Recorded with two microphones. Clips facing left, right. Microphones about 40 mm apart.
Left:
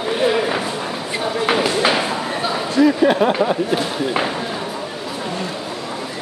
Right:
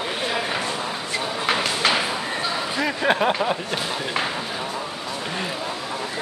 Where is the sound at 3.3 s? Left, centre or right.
Centre.